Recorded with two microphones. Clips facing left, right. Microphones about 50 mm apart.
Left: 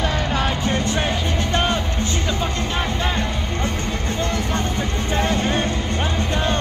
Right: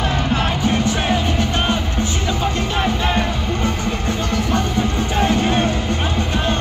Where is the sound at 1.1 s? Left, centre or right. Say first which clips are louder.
Right 3 dB; right.